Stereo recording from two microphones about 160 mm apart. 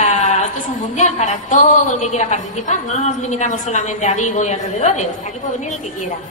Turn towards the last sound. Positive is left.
turn(degrees=45)  # may be behind; listen again after turning